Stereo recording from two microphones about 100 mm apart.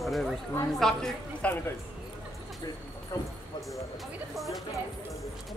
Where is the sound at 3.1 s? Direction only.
30° left (ahead or behind).